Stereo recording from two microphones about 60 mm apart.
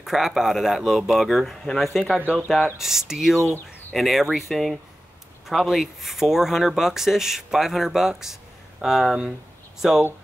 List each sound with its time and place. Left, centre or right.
0.0 s speech: centre